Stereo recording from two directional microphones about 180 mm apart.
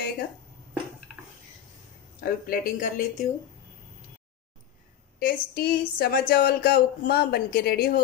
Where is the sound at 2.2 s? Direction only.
55° left (ahead or behind).